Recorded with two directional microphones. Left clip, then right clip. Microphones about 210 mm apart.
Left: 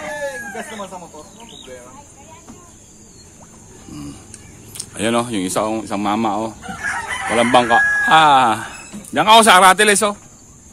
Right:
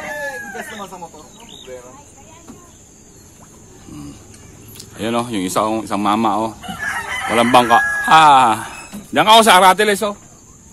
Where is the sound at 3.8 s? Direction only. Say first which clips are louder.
Left 2 dB; 5° left (ahead or behind); by 6.5 s 10° right (ahead or behind).